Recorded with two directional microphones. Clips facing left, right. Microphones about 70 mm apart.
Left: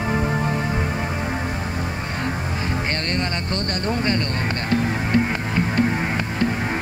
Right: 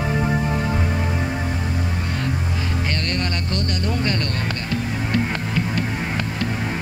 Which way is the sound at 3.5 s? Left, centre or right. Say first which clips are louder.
Even; left.